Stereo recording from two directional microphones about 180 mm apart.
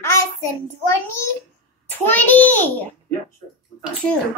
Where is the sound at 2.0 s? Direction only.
10° left (ahead or behind).